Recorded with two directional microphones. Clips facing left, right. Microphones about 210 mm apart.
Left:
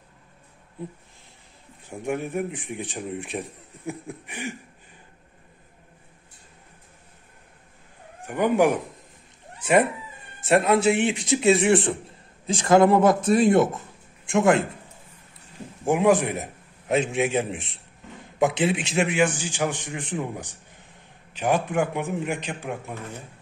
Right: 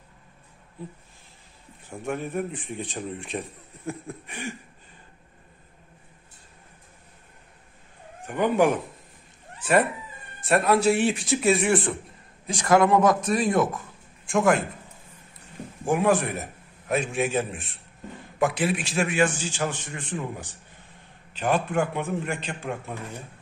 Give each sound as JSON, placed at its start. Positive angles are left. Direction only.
{"t": 1.9, "sound": "speech", "side_deg": 15}
{"t": 8.3, "sound": "speech", "side_deg": 10}
{"t": 10.4, "sound": "speech", "side_deg": 20}
{"t": 15.8, "sound": "a man's voice", "side_deg": 20}
{"t": 21.3, "sound": "speech", "side_deg": 15}